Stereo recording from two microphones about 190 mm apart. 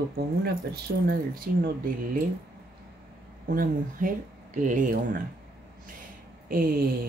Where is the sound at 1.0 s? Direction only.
55° right (ahead or behind).